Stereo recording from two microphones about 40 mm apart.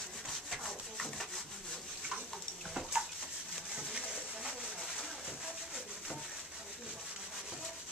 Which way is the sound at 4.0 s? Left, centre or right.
Centre.